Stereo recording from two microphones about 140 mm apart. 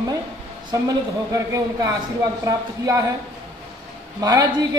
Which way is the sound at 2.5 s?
25° right (ahead or behind).